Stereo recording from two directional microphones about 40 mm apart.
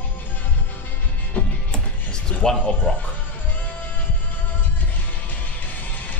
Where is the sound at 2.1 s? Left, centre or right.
Centre.